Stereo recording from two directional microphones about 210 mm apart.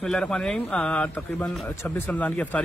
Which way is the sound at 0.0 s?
5° left (ahead or behind).